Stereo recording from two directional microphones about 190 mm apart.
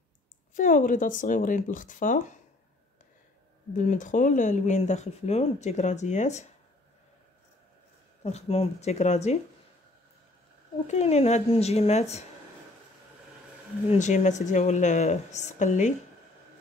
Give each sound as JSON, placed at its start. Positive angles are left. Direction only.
{"t": 0.6, "sound": "speech", "side_deg": 45}
{"t": 3.7, "sound": "speech", "side_deg": 40}
{"t": 8.2, "sound": "speech", "side_deg": 35}
{"t": 10.9, "sound": "speech", "side_deg": 35}
{"t": 13.8, "sound": "speech", "side_deg": 40}